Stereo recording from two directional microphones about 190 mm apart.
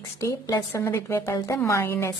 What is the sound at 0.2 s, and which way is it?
A woman's voice, 20° left (ahead or behind).